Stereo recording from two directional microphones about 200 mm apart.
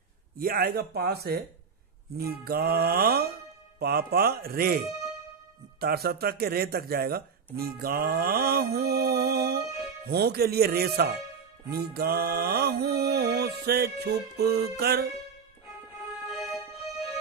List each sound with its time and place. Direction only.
0.4 s music: 50° right (ahead or behind)
5.8 s speech: 50° right (ahead or behind)
11.7 s music: 50° right (ahead or behind)